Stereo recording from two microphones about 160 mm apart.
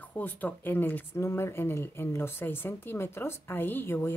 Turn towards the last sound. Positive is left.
turn(degrees=15)  # may be behind; listen again after turning